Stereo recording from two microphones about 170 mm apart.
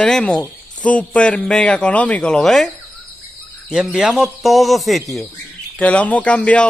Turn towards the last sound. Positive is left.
turn(degrees=5)  # may be behind; listen again after turning